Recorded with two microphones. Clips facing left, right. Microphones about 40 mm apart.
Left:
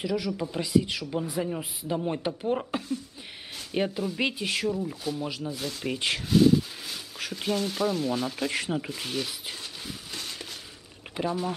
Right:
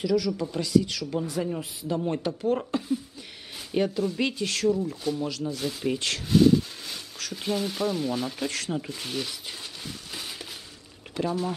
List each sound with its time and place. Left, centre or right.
0.0 s a man's voice: left
2.0 s speech: centre
2.2 s speech: centre
3.7 s speech: centre
5.9 s speech: centre
6.2 s a sound: centre
7.3 s speech: centre
8.5 s speech: centre
8.9 s speech: centre
10.1 s a sound: centre
11.2 s speech: centre